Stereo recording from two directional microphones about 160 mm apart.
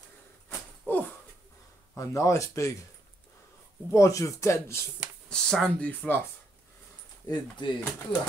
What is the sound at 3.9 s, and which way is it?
Speech, 20° left (ahead or behind).